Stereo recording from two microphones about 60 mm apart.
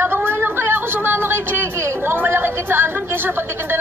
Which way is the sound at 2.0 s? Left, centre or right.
Right.